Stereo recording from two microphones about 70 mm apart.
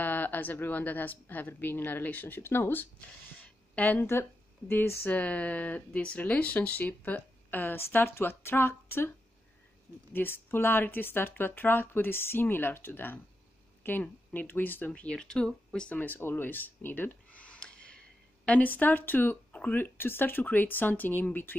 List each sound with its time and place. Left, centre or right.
0.0 s speech: left
10.1 s speech: left
15.0 s speech: centre
16.0 s a sound: left
18.4 s speech: left